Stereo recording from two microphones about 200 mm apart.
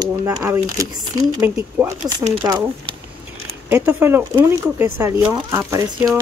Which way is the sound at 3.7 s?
10° right (ahead or behind).